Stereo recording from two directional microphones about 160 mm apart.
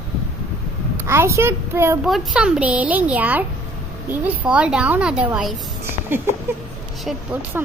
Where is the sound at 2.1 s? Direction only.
5° right (ahead or behind).